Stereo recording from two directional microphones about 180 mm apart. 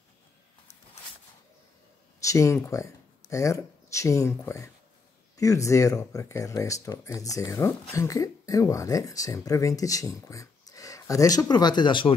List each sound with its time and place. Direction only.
2.2 s speech: 15° left (ahead or behind)